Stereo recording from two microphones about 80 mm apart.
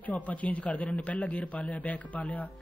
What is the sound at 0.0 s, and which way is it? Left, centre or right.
A man's voice, centre.